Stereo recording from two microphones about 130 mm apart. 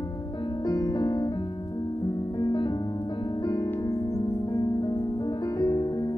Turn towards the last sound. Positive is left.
turn(degrees=30)  # may be behind; listen again after turning